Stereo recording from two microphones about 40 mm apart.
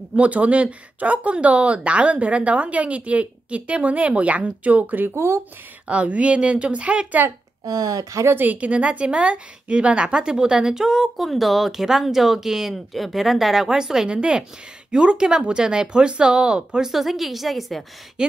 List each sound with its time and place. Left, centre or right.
0.1 s a woman's voice: right
5.9 s a woman's voice: right
8.5 s a woman's voice: right; by 12.7 s centre
12.7 s speech: centre
14.0 s speech: right
16.9 s speech: centre